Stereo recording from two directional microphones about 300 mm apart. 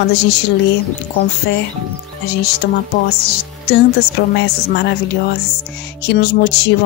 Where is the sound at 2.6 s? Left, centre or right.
Left.